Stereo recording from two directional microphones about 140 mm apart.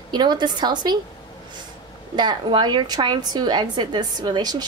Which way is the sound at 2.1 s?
30° right (ahead or behind).